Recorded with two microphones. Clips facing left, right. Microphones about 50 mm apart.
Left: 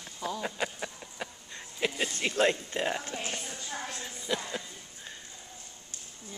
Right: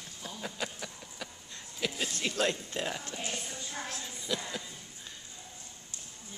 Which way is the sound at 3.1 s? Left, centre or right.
Left.